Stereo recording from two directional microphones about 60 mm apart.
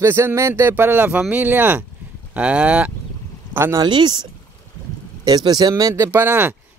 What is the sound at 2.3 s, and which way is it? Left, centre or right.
Speech, right.